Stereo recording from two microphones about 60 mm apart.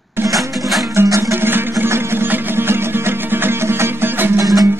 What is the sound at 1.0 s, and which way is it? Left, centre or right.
Music, right.